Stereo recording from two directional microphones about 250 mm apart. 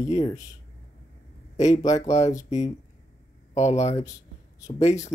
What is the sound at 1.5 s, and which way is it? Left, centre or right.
Speech, left.